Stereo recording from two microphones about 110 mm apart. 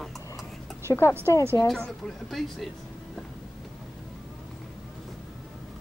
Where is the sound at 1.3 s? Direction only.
30° left (ahead or behind).